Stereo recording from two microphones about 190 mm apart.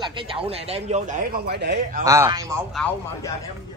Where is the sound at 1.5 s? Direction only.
60° right (ahead or behind).